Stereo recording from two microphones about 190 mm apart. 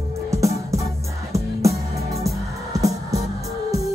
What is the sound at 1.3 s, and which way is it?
Music, 15° right (ahead or behind).